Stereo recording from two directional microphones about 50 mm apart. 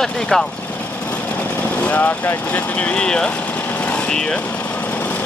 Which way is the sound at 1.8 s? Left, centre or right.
Left.